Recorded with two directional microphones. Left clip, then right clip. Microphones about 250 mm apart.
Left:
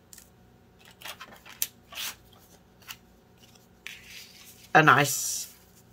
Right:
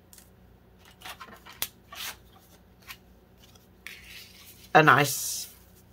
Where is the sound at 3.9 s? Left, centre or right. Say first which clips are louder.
Even; centre.